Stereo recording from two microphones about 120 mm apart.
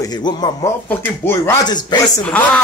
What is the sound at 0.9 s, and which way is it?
Speech, 20° left (ahead or behind).